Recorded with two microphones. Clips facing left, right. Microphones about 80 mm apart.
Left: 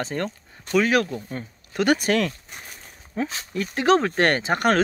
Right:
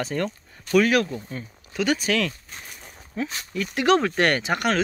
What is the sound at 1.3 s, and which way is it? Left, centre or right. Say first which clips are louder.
Speech: left 2 dB; left.